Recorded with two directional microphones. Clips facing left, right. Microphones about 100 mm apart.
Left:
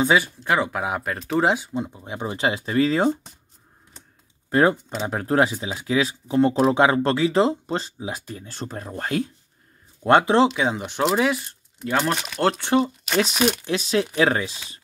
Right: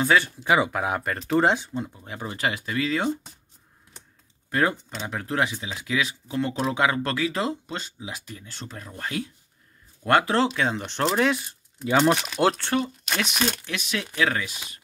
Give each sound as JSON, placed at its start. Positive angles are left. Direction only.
{"t": 0.4, "sound": "speech", "side_deg": -5}
{"t": 1.8, "sound": "speech", "side_deg": 20}
{"t": 4.5, "sound": "speech", "side_deg": 25}
{"t": 10.0, "sound": "speech", "side_deg": 20}
{"t": 12.5, "sound": "speech", "side_deg": 15}
{"t": 13.1, "sound": "speech", "side_deg": 0}
{"t": 13.7, "sound": "speech", "side_deg": 30}